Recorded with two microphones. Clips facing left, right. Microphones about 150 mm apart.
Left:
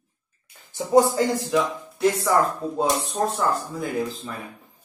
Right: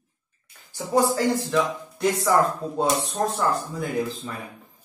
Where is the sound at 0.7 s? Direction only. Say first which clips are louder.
Left 4 dB; 20° left (ahead or behind).